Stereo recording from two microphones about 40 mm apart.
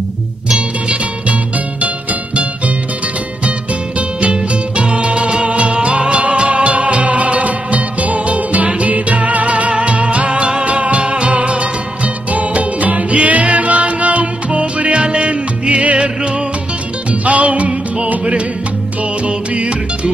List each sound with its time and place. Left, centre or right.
4.2 s music: right
17.2 s music: right
19.2 s music: right